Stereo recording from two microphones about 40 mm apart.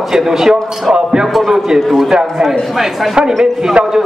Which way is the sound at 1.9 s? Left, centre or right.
Centre.